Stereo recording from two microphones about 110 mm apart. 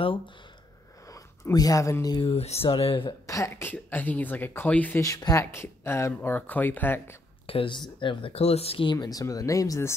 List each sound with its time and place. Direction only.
1.0 s a sound: 30° left (ahead or behind)
2.2 s speech: 65° left (ahead or behind)
3.1 s speech: 30° left (ahead or behind)
3.7 s speech: 15° left (ahead or behind)
5.0 s speech: 30° left (ahead or behind)
7.4 s speech: 55° left (ahead or behind)
8.9 s speech: 30° left (ahead or behind)